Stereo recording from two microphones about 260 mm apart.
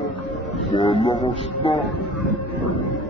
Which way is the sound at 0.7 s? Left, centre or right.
Centre.